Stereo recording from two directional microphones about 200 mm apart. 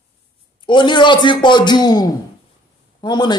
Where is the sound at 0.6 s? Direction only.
25° left (ahead or behind).